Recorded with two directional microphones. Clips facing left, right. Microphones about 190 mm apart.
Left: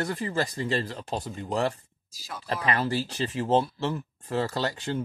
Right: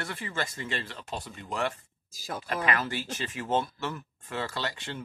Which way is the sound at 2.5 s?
30° left (ahead or behind).